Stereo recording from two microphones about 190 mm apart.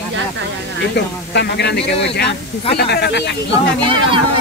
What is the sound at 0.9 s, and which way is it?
Speech, 60° left (ahead or behind).